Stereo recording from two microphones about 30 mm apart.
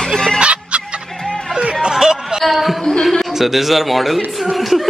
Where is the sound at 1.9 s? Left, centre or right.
Centre.